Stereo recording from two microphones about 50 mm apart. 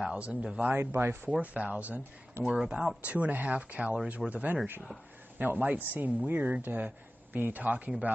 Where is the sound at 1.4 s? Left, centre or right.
Right.